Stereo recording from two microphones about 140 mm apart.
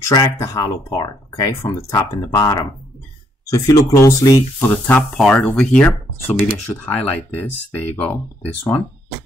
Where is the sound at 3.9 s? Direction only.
25° left (ahead or behind).